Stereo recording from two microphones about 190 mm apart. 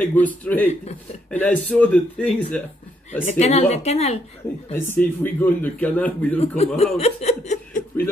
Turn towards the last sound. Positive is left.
turn(degrees=40)  # may be behind; listen again after turning